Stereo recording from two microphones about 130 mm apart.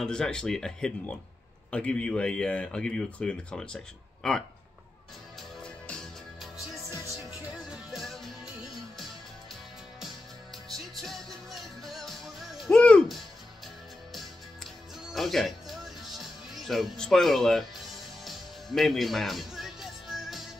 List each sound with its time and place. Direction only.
0.0 s speech: 5° left (ahead or behind)
5.6 s music: 5° left (ahead or behind)
6.9 s music: 30° left (ahead or behind)
7.5 s music: centre (ahead or behind)
10.7 s music: centre (ahead or behind)
15.1 s music: centre (ahead or behind)